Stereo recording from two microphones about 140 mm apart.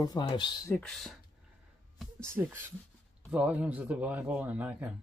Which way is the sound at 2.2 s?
15° right (ahead or behind).